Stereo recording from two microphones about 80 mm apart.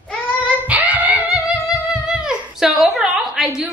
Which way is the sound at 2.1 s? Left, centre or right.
Centre.